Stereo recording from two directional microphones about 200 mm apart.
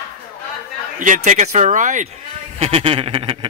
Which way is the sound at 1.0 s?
40° right (ahead or behind).